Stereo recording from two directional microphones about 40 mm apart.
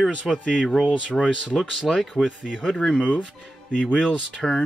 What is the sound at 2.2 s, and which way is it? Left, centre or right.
Speech, left.